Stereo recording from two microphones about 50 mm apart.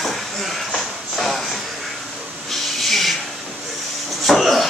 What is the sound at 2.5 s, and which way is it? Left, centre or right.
Hiss, centre.